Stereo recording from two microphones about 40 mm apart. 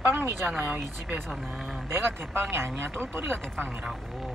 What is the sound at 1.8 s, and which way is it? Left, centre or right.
Speech, right.